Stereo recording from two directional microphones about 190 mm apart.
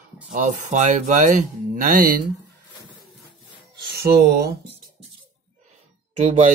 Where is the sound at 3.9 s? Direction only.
55° right (ahead or behind).